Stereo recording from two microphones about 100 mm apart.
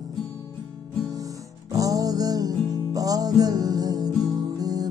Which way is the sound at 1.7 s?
35° right (ahead or behind).